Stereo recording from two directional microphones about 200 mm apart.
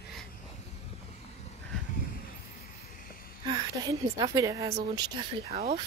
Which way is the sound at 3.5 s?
20° right (ahead or behind).